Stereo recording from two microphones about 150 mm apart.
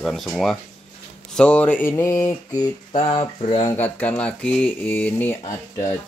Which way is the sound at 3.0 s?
35° left (ahead or behind).